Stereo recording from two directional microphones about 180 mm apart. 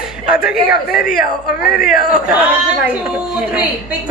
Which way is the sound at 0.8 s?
55° left (ahead or behind).